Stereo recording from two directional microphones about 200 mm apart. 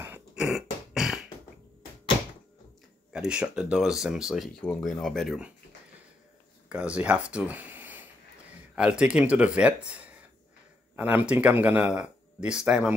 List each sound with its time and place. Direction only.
0.0 s a sound: 5° right (ahead or behind)
3.1 s speech: 5° right (ahead or behind)
6.7 s speech: 5° right (ahead or behind)